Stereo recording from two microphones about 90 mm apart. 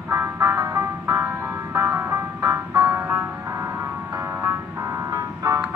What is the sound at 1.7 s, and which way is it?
Music, 30° right (ahead or behind).